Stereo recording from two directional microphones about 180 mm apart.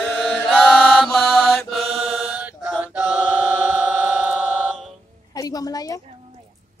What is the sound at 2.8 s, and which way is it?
Chant, 10° right (ahead or behind).